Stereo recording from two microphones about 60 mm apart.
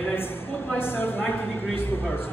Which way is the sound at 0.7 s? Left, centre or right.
Left.